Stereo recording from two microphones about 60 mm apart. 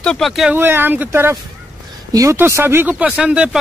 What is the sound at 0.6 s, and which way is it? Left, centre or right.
Speech, right.